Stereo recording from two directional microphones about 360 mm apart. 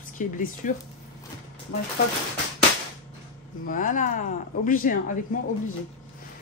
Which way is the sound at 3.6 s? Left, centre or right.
Left.